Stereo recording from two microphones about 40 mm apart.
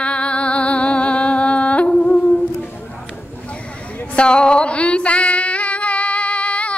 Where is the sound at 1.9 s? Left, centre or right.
Left.